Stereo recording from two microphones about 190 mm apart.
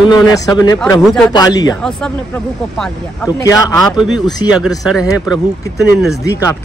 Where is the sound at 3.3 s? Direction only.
15° left (ahead or behind).